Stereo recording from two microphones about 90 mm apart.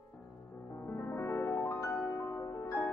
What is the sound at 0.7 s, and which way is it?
Music, 25° left (ahead or behind).